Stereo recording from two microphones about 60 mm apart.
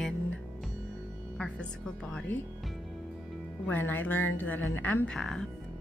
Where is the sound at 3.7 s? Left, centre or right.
Left.